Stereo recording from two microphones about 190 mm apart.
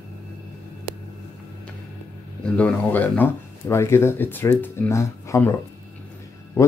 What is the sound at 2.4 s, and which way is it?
Speech, 10° left (ahead or behind).